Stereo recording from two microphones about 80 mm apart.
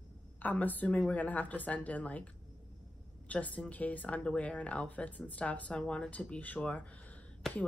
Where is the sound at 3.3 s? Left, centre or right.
Centre.